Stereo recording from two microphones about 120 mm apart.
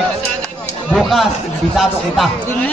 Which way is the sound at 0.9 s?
Centre (ahead or behind).